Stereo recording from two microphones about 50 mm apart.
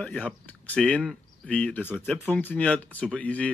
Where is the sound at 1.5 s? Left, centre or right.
Left.